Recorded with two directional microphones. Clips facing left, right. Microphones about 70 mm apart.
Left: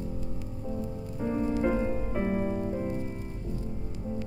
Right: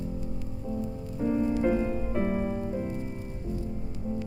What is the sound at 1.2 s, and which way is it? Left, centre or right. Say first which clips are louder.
Music: right 2 dB; centre.